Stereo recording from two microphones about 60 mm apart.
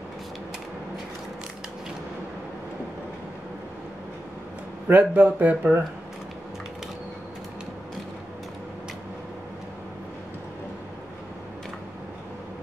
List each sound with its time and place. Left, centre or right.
4.8 s speech: right